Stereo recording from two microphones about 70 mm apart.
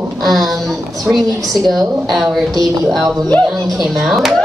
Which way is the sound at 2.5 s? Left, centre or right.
Right.